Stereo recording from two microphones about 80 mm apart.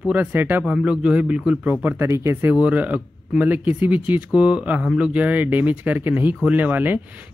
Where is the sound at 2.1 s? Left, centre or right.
Right.